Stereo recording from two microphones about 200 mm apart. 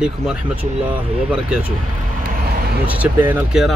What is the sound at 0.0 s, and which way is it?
A man's voice, 5° right (ahead or behind).